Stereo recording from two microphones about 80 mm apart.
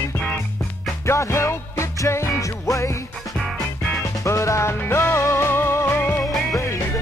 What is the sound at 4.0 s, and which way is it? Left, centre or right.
Music, left.